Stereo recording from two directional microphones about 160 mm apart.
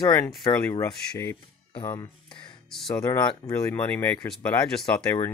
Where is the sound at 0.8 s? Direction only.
15° left (ahead or behind).